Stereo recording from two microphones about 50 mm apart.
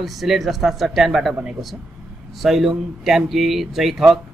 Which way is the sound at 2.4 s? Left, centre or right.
Centre.